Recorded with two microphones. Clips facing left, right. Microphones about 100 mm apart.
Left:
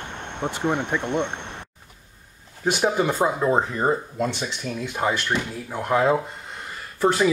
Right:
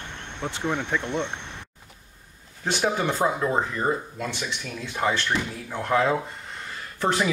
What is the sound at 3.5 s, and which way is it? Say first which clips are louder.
Speech: left 4 dB; 25° left (ahead or behind).